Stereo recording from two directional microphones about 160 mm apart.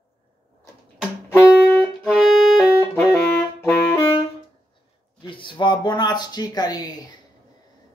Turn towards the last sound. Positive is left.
turn(degrees=25)  # may be behind; listen again after turning